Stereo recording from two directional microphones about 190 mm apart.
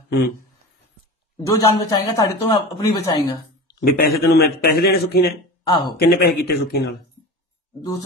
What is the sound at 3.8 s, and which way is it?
A man's voice, 55° left (ahead or behind).